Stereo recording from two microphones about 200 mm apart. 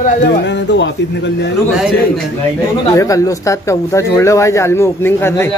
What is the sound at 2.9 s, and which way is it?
Speech, 15° left (ahead or behind).